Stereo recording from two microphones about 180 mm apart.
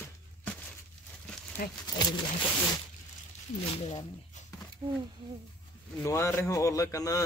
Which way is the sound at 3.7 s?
35° left (ahead or behind).